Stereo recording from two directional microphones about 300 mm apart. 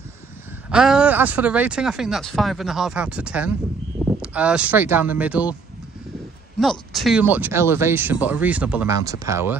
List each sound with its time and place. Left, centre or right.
0.7 s speech: centre
6.6 s speech: centre